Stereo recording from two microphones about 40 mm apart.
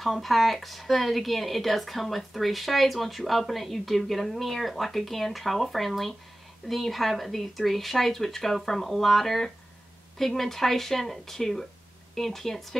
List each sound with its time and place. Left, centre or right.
0.0 s speech: centre